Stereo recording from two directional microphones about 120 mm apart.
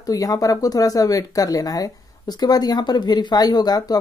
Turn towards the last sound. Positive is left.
turn(degrees=35)  # may be behind; listen again after turning